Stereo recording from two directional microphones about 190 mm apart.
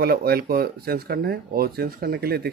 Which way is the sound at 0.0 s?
55° right (ahead or behind).